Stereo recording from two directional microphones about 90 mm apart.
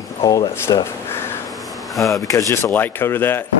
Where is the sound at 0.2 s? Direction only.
45° left (ahead or behind).